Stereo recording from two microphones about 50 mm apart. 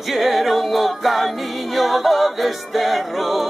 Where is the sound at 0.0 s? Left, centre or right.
Centre.